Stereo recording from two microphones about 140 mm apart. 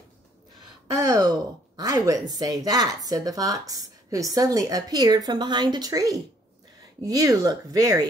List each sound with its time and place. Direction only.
0.9 s speech: 25° right (ahead or behind)